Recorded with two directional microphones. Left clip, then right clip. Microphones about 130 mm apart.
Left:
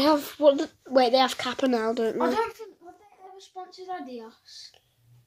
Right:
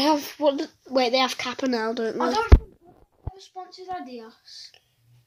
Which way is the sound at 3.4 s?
20° right (ahead or behind).